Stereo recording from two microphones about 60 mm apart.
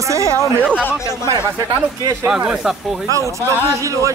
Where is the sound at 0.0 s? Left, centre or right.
Right.